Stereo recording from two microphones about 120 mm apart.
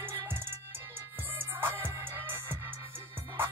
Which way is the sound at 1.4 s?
15° right (ahead or behind).